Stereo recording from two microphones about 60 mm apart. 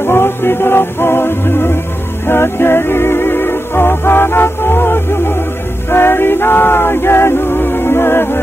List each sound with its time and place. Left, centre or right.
0.0 s music: left